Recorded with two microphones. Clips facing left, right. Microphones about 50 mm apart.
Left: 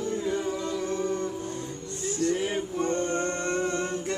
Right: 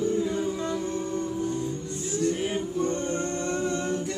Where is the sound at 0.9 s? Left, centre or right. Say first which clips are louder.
Left 1 dB; left.